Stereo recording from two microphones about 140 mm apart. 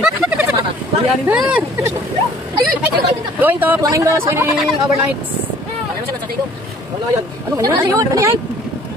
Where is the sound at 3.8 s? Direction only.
25° right (ahead or behind).